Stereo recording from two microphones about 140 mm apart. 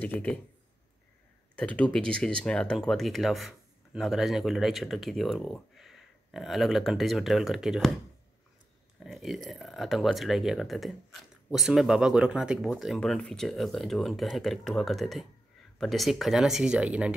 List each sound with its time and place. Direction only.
0.0 s speech: 10° left (ahead or behind)
1.5 s speech: 10° left (ahead or behind)
9.0 s speech: centre (ahead or behind)